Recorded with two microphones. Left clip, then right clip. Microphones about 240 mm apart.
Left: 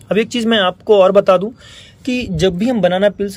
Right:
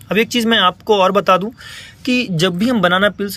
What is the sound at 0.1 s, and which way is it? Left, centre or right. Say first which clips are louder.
Speech: even; centre.